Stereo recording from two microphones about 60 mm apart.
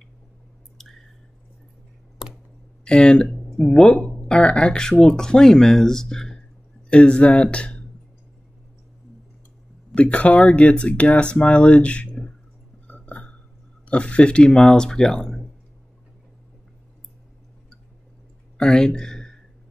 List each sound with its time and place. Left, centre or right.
2.8 s speech: centre
9.9 s speech: left
12.8 s a sound: left
13.8 s speech: centre
18.6 s speech: centre